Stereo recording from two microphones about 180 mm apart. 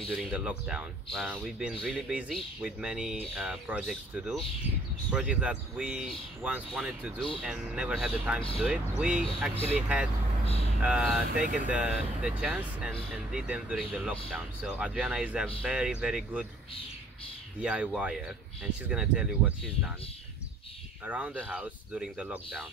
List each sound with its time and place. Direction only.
0.1 s speech: 5° right (ahead or behind)
11.4 s speech: 45° right (ahead or behind)
11.7 s speech: 5° right (ahead or behind)
17.6 s speech: 5° right (ahead or behind)
21.0 s speech: 10° right (ahead or behind)